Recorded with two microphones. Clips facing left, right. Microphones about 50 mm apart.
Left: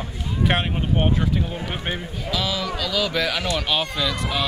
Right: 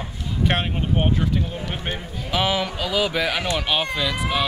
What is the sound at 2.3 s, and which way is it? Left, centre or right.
Speech, right.